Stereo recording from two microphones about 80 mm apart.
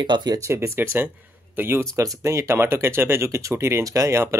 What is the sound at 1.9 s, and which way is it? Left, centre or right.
Speech, right.